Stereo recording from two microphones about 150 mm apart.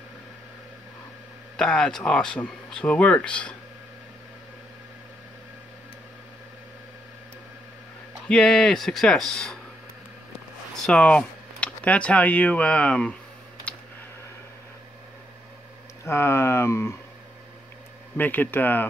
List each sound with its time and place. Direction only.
1.6 s speech: 5° left (ahead or behind)
8.3 s speech: 5° left (ahead or behind)
10.8 s speech: 5° left (ahead or behind)
13.7 s a sound: 10° left (ahead or behind)
16.0 s speech: 15° left (ahead or behind)
18.1 s speech: 10° left (ahead or behind)